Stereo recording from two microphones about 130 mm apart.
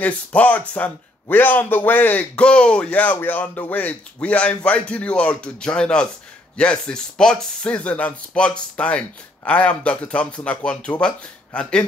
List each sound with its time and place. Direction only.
0.0 s speech: 10° left (ahead or behind)